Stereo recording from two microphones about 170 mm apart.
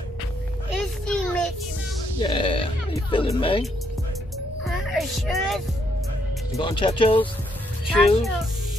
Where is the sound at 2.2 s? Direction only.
30° left (ahead or behind).